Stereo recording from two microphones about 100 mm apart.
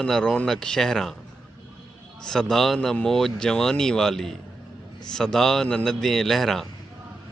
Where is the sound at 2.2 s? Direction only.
5° left (ahead or behind).